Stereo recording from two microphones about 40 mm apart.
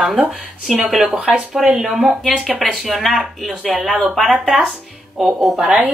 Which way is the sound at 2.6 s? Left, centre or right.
Centre.